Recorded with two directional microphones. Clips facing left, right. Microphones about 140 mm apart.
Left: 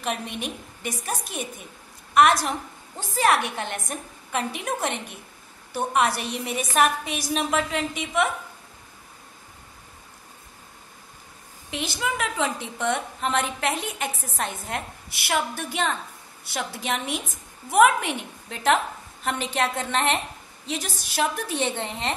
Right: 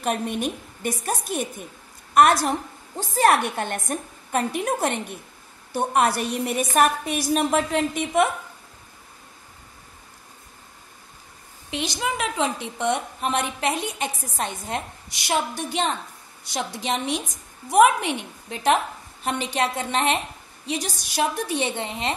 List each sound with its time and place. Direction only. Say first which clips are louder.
0.0 s a woman's voice: right 5 dB; 45° right (ahead or behind)
11.7 s a woman's voice: right 2 dB; 15° right (ahead or behind)